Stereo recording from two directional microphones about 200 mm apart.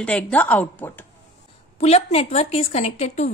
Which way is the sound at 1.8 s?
30° left (ahead or behind).